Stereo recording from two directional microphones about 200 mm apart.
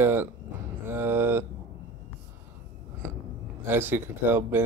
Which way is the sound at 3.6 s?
10° right (ahead or behind).